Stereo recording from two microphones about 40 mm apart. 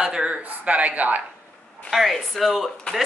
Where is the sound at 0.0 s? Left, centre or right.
Centre.